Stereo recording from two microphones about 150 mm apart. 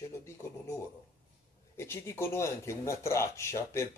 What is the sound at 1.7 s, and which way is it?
Speech, 15° left (ahead or behind).